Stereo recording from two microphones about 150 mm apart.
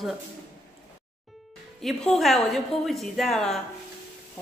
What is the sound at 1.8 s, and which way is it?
A woman's voice, centre (ahead or behind).